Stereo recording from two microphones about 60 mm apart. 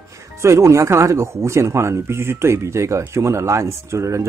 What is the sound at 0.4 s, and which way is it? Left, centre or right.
Speech, right.